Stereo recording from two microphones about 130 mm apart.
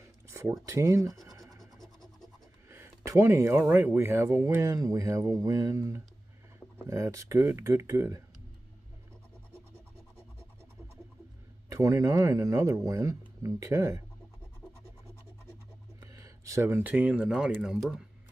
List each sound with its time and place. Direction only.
0.3 s a sound: 20° right (ahead or behind)
0.7 s speech: 25° right (ahead or behind)
1.6 s music: 5° left (ahead or behind)
2.7 s speech: 20° right (ahead or behind)
11.7 s speech: 25° right (ahead or behind)
16.0 s speech: 25° right (ahead or behind); by 18.0 s centre (ahead or behind)